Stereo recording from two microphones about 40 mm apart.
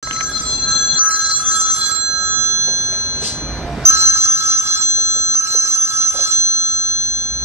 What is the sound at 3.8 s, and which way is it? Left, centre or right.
Telephone bell ringing, right.